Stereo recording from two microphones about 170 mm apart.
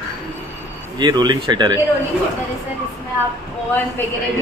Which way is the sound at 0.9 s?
25° right (ahead or behind).